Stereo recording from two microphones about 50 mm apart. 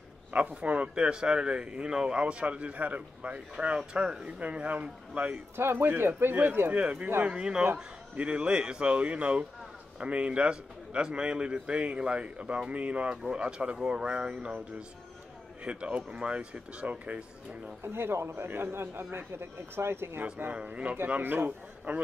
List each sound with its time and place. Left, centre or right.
0.3 s a man's voice: right
5.6 s speech: right
5.9 s a man's voice: right
6.7 s speech: right
15.6 s speech: right
17.8 s a man's voice: right
20.5 s speech: right
21.2 s a man's voice: right